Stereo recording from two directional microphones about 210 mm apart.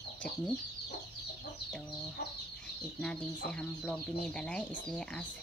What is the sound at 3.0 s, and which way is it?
Speech, 5° left (ahead or behind).